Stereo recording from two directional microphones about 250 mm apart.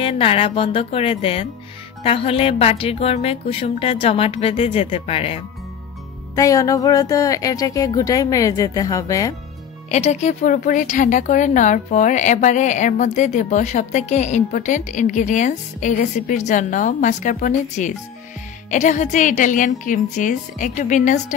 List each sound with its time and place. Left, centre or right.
0.0 s speech: left
6.3 s speech: centre
9.8 s a woman's voice: left